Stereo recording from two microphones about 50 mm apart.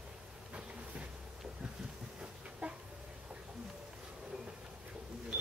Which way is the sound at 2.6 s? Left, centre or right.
Right.